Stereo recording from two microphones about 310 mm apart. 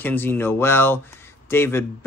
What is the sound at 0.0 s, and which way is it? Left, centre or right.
Speech, centre.